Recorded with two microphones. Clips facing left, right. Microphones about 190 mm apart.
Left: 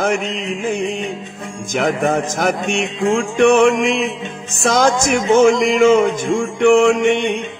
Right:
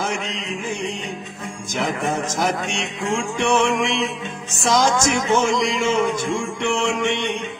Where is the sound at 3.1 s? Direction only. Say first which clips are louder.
Left 7 dB; 55° left (ahead or behind).